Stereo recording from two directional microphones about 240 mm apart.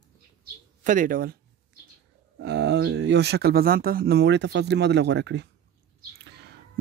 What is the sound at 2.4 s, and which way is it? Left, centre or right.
Speech, right.